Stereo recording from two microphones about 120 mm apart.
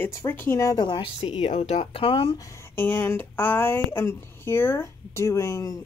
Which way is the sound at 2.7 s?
15° left (ahead or behind).